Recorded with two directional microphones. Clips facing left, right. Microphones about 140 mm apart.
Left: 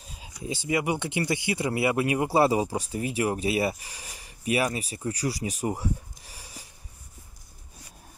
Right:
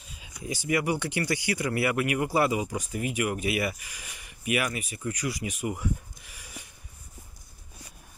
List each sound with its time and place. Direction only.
0.0 s speech: 35° left (ahead or behind)